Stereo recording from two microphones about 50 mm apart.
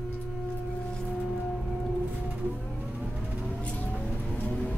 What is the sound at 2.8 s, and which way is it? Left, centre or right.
Vehicle, right.